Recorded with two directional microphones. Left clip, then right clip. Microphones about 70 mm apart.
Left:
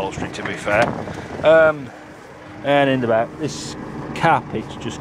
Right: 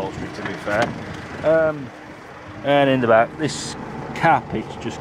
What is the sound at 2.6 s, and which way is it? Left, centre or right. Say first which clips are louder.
Speech: even; centre.